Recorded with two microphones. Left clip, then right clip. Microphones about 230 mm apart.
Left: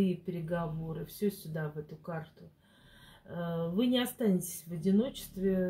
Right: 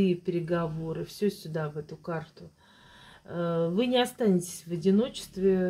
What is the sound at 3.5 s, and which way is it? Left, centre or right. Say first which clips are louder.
Speech: right 5 dB; right.